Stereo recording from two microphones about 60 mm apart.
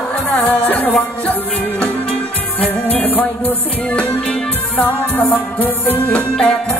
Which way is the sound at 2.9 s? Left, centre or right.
Left.